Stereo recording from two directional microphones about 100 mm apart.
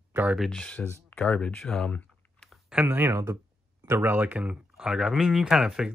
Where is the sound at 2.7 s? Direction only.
20° right (ahead or behind).